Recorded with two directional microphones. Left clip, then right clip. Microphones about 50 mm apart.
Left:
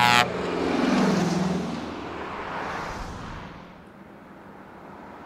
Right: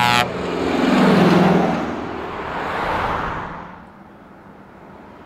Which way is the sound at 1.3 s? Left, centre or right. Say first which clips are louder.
Right 13 dB; right.